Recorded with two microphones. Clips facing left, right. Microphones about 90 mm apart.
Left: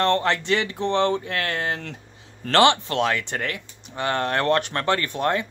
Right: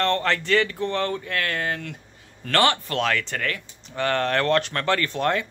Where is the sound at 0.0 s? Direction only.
20° left (ahead or behind).